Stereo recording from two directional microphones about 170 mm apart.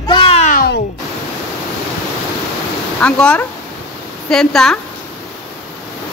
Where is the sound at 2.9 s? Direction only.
5° left (ahead or behind).